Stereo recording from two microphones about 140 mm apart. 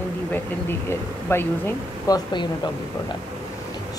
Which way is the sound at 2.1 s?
35° left (ahead or behind).